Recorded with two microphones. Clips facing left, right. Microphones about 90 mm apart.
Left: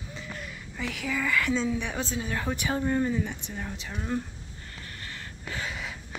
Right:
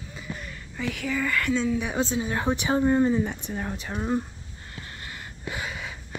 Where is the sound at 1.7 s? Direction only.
15° right (ahead or behind).